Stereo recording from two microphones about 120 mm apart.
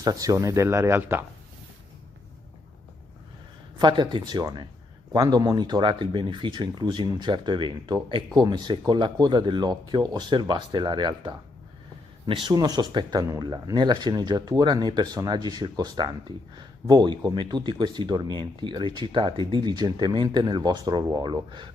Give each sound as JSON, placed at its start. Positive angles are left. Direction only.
{"t": 0.0, "sound": "speech", "side_deg": -30}
{"t": 3.7, "sound": "speech", "side_deg": -40}